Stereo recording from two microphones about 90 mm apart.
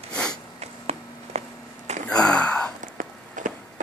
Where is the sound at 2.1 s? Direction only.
10° left (ahead or behind).